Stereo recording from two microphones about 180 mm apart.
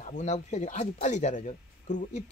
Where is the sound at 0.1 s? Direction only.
40° left (ahead or behind).